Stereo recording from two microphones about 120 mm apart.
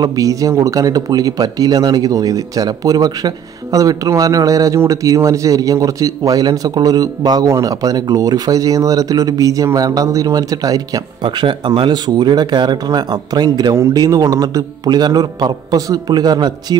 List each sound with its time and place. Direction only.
0.0 s speech: 30° right (ahead or behind)